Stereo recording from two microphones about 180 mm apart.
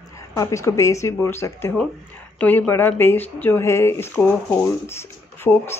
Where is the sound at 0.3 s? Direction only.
15° left (ahead or behind).